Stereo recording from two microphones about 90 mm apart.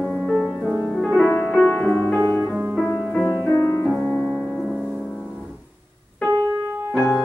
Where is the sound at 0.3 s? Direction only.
5° left (ahead or behind).